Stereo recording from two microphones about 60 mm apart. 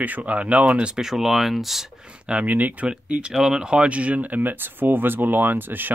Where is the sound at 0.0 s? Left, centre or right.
Right; by 1.9 s centre.